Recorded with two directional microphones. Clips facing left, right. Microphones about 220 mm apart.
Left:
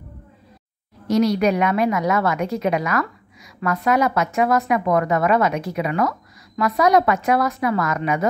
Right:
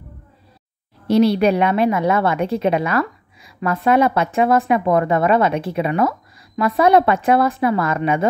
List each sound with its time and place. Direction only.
1.0 s speech: 30° right (ahead or behind)